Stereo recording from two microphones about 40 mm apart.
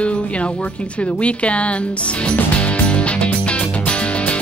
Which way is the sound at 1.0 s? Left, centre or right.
Left.